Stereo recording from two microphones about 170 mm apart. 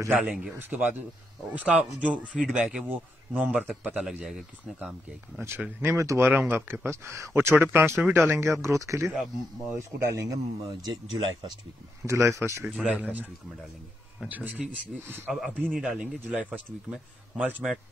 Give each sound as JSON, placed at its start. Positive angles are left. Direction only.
{"t": 0.0, "sound": "speech", "side_deg": -5}
{"t": 5.4, "sound": "speech", "side_deg": -15}
{"t": 12.1, "sound": "speech", "side_deg": -15}
{"t": 12.6, "sound": "speech", "side_deg": -5}
{"t": 14.2, "sound": "speech", "side_deg": -5}